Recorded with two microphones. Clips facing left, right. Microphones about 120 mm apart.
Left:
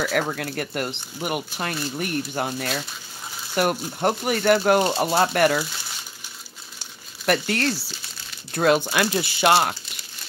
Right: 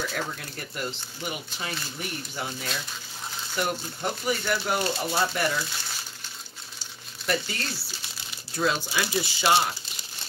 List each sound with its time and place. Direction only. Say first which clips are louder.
0.0 s speech: left 8 dB; 70° left (ahead or behind)
7.2 s speech: left 7 dB; 70° left (ahead or behind)